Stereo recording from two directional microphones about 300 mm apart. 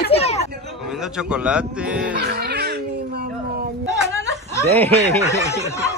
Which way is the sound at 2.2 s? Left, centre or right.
Right.